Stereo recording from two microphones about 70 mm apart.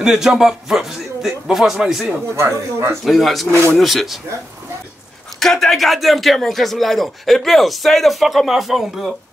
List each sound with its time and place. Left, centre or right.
0.0 s speech: centre
2.3 s speech: right
3.1 s speech: centre
5.4 s speech: centre